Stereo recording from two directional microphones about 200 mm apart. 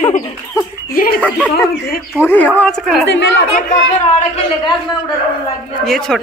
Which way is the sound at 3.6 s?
35° left (ahead or behind).